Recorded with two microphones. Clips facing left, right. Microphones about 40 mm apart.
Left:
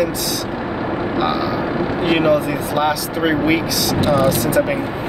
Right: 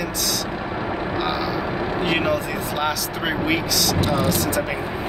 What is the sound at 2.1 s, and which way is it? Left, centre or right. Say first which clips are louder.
Speech: left 8 dB; centre.